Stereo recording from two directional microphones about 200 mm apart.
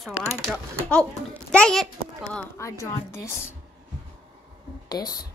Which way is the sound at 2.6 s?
15° left (ahead or behind).